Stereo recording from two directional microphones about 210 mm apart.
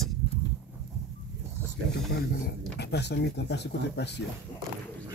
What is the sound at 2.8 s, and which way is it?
Speech, 55° left (ahead or behind).